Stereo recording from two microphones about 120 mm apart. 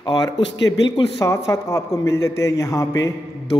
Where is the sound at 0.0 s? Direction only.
35° left (ahead or behind).